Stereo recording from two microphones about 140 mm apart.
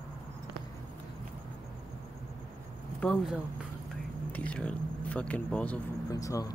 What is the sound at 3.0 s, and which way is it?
Speech, 5° left (ahead or behind).